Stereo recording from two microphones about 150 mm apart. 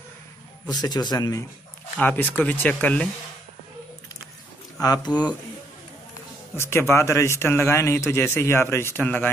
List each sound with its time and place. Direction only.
0.7 s a man's voice: 25° left (ahead or behind)
2.0 s speech: 10° left (ahead or behind)
4.7 s a man's voice: 25° left (ahead or behind)
6.5 s speech: 15° left (ahead or behind)